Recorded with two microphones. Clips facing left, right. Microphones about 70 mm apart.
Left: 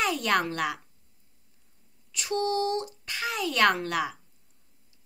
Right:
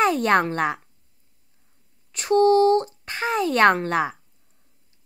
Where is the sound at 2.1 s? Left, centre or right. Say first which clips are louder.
Right 11 dB; right.